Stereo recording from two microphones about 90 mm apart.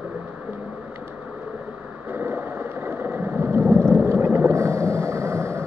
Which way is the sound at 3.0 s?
25° right (ahead or behind).